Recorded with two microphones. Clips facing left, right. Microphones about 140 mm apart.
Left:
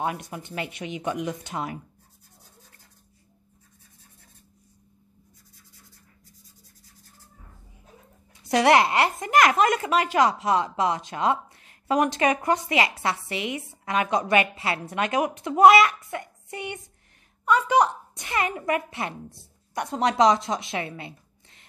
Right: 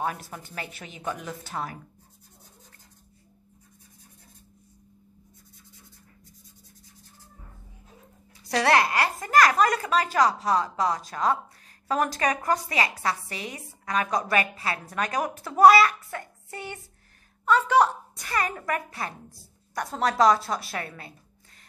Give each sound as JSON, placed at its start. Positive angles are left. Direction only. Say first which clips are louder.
{"t": 0.2, "sound": "a woman's voice", "louder": "left 5 dB", "side_deg": 20}
{"t": 8.5, "sound": "a woman's voice", "louder": "left 3 dB", "side_deg": 20}
{"t": 13.4, "sound": "a woman's voice", "louder": "left 7 dB", "side_deg": -35}
{"t": 13.8, "sound": "a woman's voice", "louder": "left 2 dB", "side_deg": 25}